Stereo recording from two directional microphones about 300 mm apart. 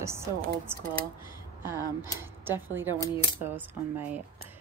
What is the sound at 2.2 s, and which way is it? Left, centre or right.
A woman's voice, centre.